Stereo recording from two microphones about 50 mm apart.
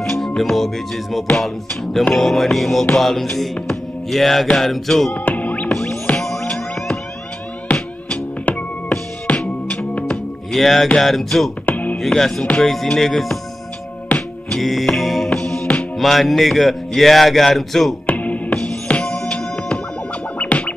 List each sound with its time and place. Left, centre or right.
0.0 s music: centre
2.1 s speech: centre
3.6 s music: centre
4.6 s speech: centre
5.2 s music: left
6.1 s music: centre
8.1 s music: left
10.5 s speech: centre
11.6 s music: left
12.1 s music: centre
14.5 s music: centre
15.6 s music: left
16.0 s speech: centre
18.0 s music: left